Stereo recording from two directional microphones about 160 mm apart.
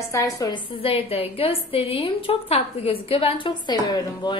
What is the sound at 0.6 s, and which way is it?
A woman's voice, 35° left (ahead or behind).